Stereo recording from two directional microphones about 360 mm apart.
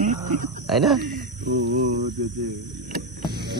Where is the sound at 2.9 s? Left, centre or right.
Right.